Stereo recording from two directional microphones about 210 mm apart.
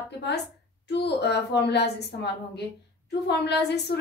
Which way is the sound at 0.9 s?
50° left (ahead or behind).